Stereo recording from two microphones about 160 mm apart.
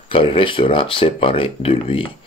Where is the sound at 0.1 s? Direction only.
35° left (ahead or behind).